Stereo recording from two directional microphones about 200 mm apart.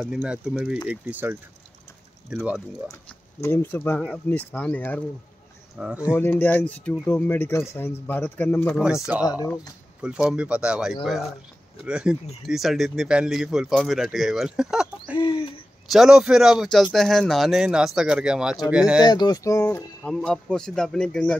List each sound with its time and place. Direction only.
0.0 s speech: 5° right (ahead or behind)
3.3 s speech: 10° left (ahead or behind)
5.8 s speech: 5° right (ahead or behind)
6.1 s speech: 10° left (ahead or behind)
10.0 s speech: 5° right (ahead or behind)
15.1 s a sound: 25° left (ahead or behind)
15.9 s speech: centre (ahead or behind)
19.0 s speech: 20° left (ahead or behind); by 21.4 s 5° left (ahead or behind)